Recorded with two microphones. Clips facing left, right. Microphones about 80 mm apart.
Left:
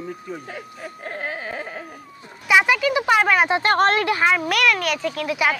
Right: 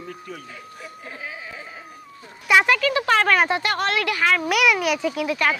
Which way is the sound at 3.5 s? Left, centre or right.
Left.